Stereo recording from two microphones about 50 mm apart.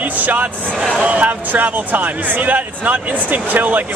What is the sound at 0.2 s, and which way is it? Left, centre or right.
A man's voice, right.